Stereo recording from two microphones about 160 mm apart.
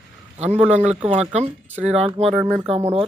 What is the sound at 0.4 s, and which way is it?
Speech, 40° right (ahead or behind).